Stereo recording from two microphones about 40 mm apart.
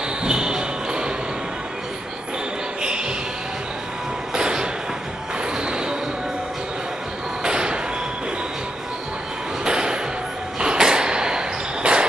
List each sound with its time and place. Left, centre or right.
0.2 s basketball bounce: centre
4.3 s a sound: centre
7.4 s thump: right
9.7 s music: centre
10.6 s basketball bounce: centre